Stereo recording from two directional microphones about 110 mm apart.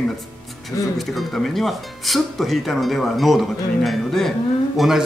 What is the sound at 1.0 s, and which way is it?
Speech, centre (ahead or behind).